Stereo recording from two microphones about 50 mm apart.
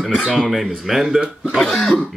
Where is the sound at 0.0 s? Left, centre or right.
Centre.